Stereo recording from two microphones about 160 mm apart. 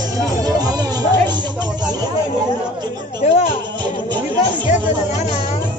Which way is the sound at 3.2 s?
45° left (ahead or behind).